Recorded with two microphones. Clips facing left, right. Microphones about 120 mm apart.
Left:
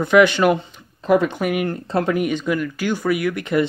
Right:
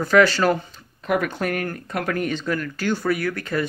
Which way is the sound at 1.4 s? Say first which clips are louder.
Left 4 dB; 10° left (ahead or behind).